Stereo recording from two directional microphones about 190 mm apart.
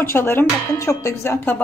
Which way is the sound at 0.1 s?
10° left (ahead or behind).